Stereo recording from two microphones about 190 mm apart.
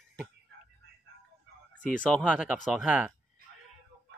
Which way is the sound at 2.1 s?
5° right (ahead or behind).